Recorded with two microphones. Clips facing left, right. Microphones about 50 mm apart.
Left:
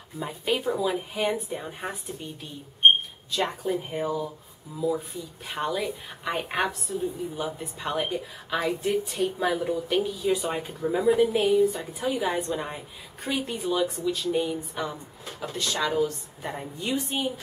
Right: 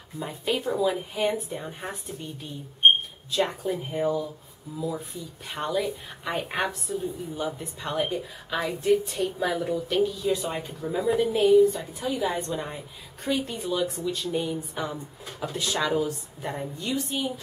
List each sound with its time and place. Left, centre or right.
0.2 s a woman's voice: centre
16.8 s a woman's voice: left